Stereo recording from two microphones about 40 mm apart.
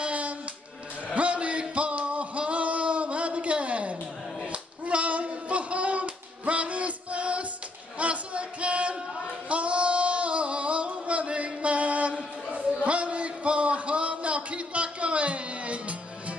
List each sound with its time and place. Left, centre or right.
0.0 s hands: right
1.1 s a sound: right
4.5 s clapping: right
8.0 s music: right
9.5 s singing: right
12.5 s a sound: right